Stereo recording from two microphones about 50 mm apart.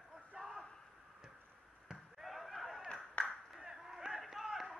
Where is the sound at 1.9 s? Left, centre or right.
Centre.